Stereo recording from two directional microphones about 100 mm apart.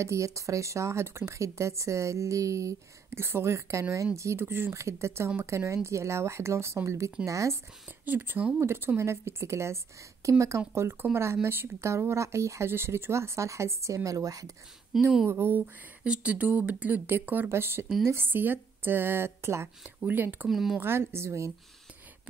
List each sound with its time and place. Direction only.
0.0 s speech: 30° right (ahead or behind)
8.0 s speech: 20° right (ahead or behind); by 14.5 s 35° right (ahead or behind)
14.9 s a woman's voice: centre (ahead or behind)
15.2 s speech: 25° right (ahead or behind)
20.4 s a woman's voice: centre (ahead or behind)
20.8 s speech: 25° right (ahead or behind)